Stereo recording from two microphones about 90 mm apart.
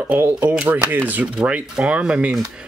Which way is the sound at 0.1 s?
20° right (ahead or behind).